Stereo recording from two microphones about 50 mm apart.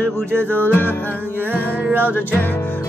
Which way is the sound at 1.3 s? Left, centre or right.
Right.